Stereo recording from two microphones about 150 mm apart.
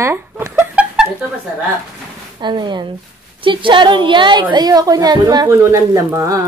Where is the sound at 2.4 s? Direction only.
30° right (ahead or behind).